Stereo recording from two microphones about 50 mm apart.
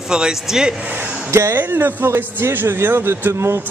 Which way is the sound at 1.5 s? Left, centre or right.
Right.